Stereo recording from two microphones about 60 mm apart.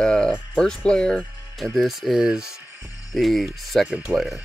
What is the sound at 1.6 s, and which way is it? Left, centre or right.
Speech, centre.